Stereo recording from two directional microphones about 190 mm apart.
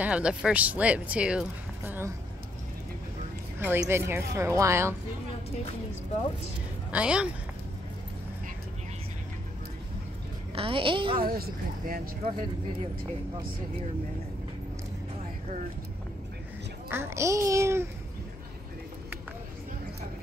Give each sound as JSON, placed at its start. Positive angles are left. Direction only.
{"t": 0.0, "sound": "speech", "side_deg": -5}
{"t": 3.5, "sound": "speech", "side_deg": -10}
{"t": 6.9, "sound": "speech", "side_deg": -5}
{"t": 10.5, "sound": "a woman's voice", "side_deg": -30}
{"t": 11.1, "sound": "speech", "side_deg": -50}
{"t": 16.9, "sound": "speech", "side_deg": -15}